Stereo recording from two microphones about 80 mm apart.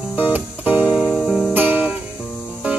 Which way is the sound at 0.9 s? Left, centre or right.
Centre.